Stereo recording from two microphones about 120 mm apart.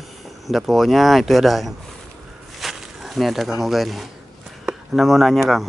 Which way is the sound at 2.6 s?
Centre (ahead or behind).